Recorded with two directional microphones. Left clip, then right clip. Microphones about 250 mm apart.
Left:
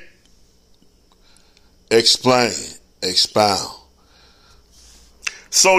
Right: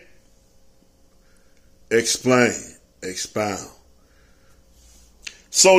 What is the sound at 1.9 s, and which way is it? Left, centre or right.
Speech, centre.